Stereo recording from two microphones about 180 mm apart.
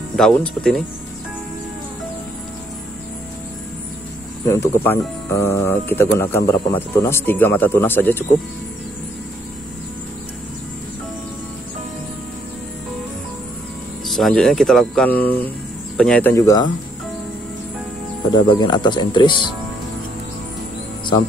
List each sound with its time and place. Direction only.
0.1 s speech: 5° left (ahead or behind)
4.5 s speech: 15° left (ahead or behind)
14.0 s speech: centre (ahead or behind); by 16.6 s 20° left (ahead or behind)
18.3 s speech: 25° left (ahead or behind)